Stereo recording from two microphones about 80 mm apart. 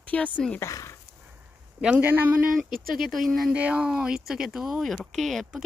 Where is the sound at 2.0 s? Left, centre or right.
Right.